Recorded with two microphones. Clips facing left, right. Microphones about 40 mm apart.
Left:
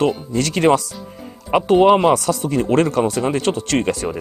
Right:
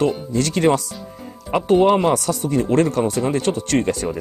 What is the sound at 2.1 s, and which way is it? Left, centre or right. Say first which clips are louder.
Speech: left 2 dB; left.